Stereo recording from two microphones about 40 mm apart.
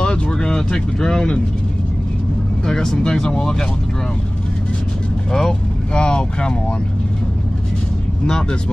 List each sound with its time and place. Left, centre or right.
0.0 s speech: left
2.6 s speech: centre
5.3 s speech: centre
8.3 s speech: centre